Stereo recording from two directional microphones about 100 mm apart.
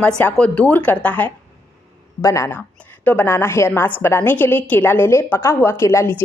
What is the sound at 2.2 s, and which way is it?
A woman's voice, 30° left (ahead or behind).